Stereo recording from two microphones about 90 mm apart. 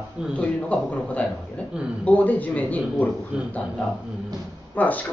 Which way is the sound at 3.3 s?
10° right (ahead or behind).